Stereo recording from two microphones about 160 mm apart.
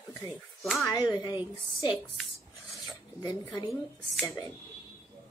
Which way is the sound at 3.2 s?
20° left (ahead or behind).